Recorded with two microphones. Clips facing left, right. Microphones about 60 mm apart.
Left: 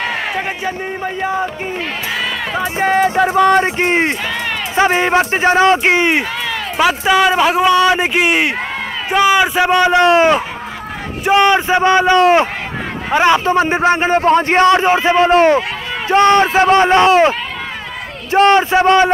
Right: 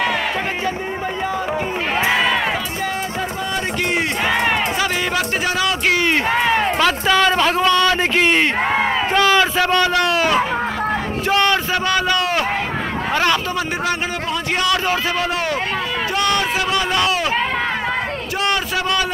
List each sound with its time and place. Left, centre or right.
2.8 s music: left
3.8 s a man's voice: left
6.3 s a sound: right
6.8 s a man's voice: centre; by 17.3 s left
18.3 s a man's voice: left